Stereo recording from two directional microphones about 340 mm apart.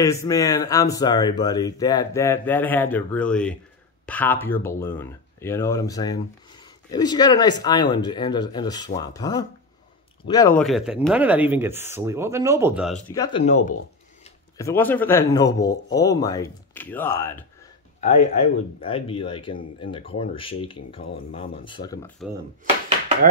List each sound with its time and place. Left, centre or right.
0.0 s speech: centre
10.6 s speech: centre
13.1 s speech: centre
13.4 s speech: left
14.6 s speech: centre
18.0 s speech: centre